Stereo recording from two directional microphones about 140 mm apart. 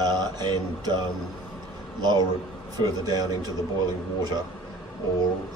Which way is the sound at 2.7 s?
30° right (ahead or behind).